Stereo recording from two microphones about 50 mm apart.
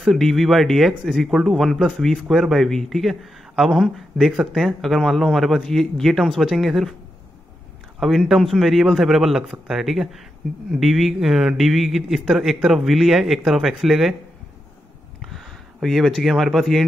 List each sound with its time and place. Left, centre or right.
0.0 s speech: centre
8.0 s speech: centre
15.2 s a sound: centre
16.1 s speech: centre